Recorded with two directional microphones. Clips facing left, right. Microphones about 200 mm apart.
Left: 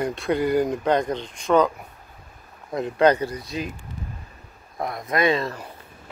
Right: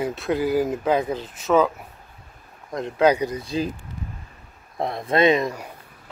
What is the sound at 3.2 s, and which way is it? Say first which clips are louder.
Speech: right 4 dB; 25° right (ahead or behind).